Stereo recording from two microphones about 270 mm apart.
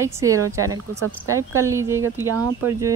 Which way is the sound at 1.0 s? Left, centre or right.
Right.